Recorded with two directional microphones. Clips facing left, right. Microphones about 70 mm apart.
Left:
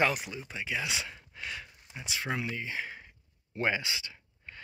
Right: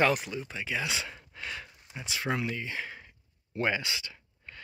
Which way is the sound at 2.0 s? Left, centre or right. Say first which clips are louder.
Right 2 dB; centre.